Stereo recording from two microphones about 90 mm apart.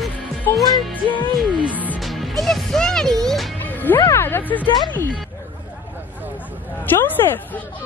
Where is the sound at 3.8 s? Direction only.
20° left (ahead or behind).